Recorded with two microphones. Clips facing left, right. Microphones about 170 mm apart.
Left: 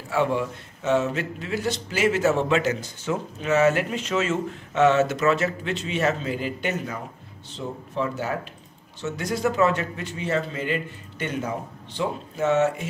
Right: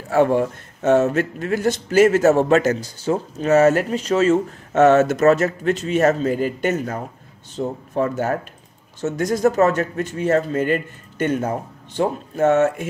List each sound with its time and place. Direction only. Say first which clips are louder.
0.1 s a man's voice: right 7 dB; 45° right (ahead or behind)